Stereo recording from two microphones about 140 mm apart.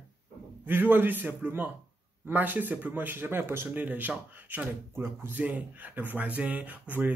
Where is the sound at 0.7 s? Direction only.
15° right (ahead or behind).